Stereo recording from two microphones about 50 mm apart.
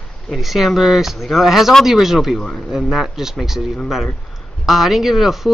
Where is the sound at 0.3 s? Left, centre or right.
Centre.